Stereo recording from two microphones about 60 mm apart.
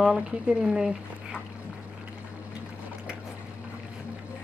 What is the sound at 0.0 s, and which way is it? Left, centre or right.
Speech, centre.